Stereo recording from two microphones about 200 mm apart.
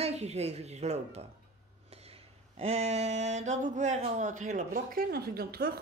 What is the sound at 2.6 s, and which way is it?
Speech, 30° right (ahead or behind).